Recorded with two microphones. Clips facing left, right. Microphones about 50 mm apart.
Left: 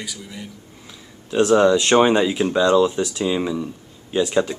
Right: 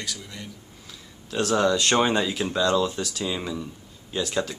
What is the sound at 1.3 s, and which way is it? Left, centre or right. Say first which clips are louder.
Speech: left 7 dB; centre.